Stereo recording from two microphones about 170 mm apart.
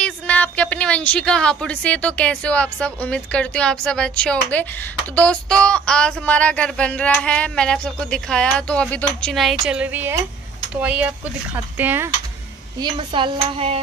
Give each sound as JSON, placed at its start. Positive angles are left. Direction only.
{"t": 0.0, "sound": "a woman's voice", "side_deg": 5}
{"t": 12.7, "sound": "speech", "side_deg": -25}